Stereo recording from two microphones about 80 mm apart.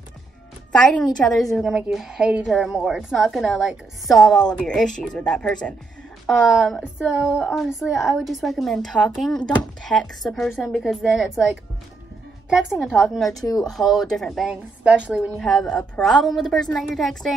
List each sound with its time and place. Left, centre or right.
0.7 s a woman's voice: centre
1.4 s a woman's voice: centre
6.3 s a woman's voice: centre
14.5 s speech: centre
15.3 s a woman's voice: centre